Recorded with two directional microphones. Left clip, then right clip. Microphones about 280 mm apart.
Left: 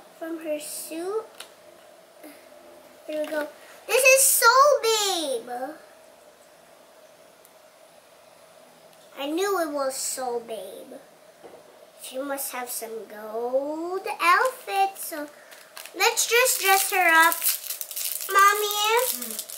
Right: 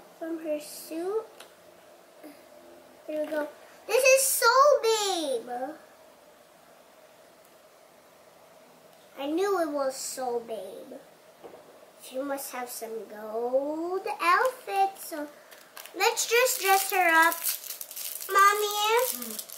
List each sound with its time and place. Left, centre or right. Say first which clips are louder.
0.2 s a sound: left 2 dB; centre
3.1 s speech: left 2 dB; centre
4.9 s babbling: left 3 dB; centre
5.2 s a child's voice: left 2 dB; centre
9.1 s a child's voice: left 2 dB; centre
9.6 s a child's voice: left 2 dB; centre
12.2 s speech: left 2 dB; centre
14.0 s a child's voice: left 4 dB; centre